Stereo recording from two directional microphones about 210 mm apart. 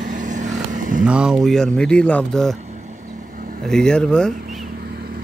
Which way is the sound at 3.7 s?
5° left (ahead or behind).